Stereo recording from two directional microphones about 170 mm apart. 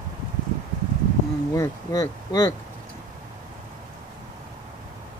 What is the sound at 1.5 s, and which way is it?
Speech, 20° left (ahead or behind).